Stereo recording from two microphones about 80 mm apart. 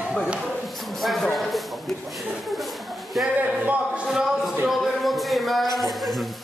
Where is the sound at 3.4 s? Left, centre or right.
Centre.